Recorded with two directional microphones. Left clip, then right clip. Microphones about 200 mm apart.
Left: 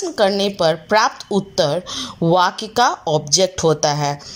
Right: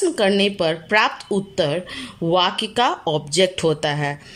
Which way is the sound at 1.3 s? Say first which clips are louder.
Left 3 dB; 30° right (ahead or behind).